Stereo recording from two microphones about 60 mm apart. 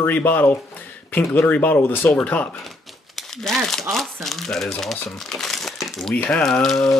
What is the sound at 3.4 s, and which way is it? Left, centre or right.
Speech, centre.